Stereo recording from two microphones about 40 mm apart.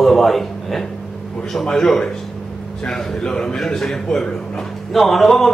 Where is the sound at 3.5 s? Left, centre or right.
Centre.